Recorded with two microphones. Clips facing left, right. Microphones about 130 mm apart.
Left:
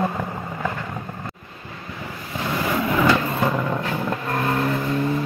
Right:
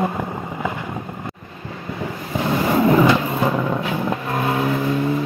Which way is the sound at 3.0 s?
10° right (ahead or behind).